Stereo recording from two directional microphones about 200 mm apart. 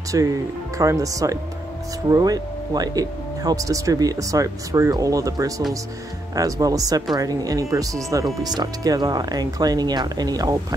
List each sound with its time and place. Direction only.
0.1 s speech: 15° right (ahead or behind)